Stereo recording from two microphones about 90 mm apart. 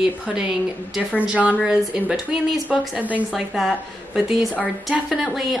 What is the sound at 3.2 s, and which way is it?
A woman's voice, centre (ahead or behind).